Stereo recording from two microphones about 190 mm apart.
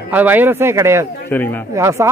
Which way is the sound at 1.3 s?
10° left (ahead or behind).